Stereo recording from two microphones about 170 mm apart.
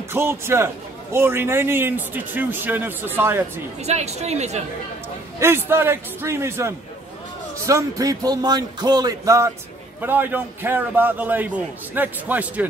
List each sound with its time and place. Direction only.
0.1 s a man's voice: 15° right (ahead or behind)
3.8 s a woman's voice: 40° right (ahead or behind)
5.4 s a man's voice: 15° right (ahead or behind)